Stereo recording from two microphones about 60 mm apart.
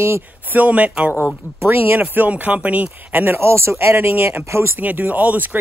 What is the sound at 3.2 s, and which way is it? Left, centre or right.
Speech, right.